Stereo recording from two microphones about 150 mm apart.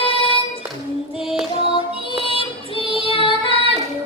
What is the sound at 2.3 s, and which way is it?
Music, 35° left (ahead or behind).